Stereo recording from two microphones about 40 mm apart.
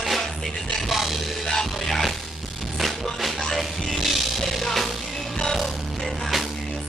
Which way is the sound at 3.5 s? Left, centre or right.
Centre.